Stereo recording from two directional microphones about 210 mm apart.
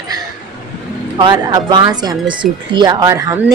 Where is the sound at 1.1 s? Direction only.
20° right (ahead or behind).